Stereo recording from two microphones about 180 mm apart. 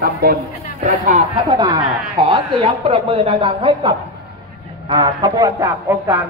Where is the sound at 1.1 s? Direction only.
25° right (ahead or behind).